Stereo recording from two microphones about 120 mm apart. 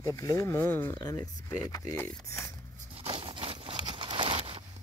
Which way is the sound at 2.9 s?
55° right (ahead or behind).